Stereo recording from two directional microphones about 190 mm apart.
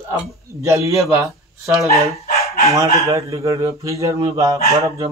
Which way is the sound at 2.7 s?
15° right (ahead or behind).